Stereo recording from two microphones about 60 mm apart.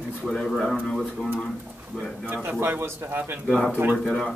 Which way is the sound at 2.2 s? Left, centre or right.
Right.